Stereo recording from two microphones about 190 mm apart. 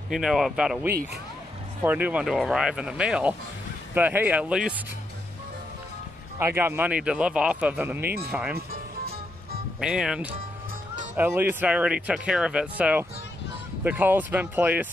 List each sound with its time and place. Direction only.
0.1 s speech: centre (ahead or behind)
6.4 s speech: 15° right (ahead or behind)
8.0 s speech: 55° right (ahead or behind)
8.3 s speech: 5° right (ahead or behind)
8.5 s music: 55° right (ahead or behind)
9.8 s speech: 5° right (ahead or behind)